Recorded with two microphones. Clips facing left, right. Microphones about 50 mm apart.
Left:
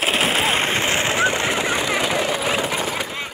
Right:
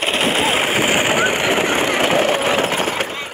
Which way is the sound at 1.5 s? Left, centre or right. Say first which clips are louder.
Right 4 dB; right.